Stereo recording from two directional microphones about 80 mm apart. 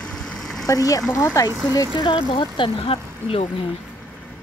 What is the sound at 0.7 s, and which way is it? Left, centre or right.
Speech, left.